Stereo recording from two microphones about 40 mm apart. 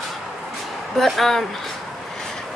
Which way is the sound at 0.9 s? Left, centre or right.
Centre.